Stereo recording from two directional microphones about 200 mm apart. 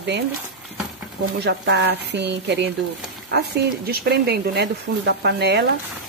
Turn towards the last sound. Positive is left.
turn(degrees=-55)  # may be behind; listen again after turning